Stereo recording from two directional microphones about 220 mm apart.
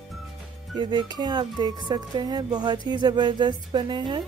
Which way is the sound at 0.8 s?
20° right (ahead or behind).